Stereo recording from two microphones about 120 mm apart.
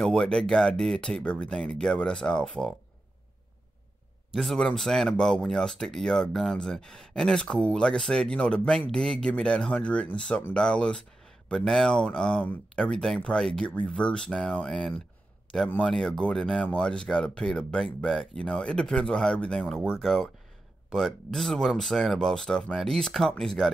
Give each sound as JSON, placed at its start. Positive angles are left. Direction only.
{"t": 0.0, "sound": "speech", "side_deg": 5}
{"t": 4.3, "sound": "speech", "side_deg": 0}